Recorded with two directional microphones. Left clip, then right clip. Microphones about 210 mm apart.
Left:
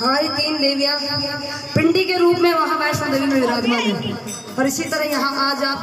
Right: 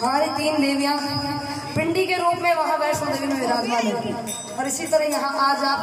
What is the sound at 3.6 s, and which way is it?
Speech, 25° right (ahead or behind).